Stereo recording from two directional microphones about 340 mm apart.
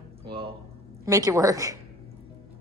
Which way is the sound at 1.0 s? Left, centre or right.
Centre.